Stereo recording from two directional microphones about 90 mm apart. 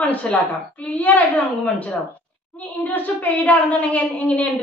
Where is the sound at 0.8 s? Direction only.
20° left (ahead or behind).